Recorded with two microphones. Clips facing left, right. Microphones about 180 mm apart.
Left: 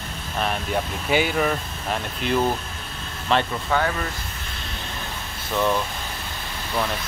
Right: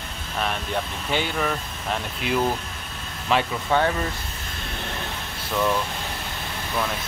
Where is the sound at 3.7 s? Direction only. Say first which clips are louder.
Right 3 dB; 25° right (ahead or behind).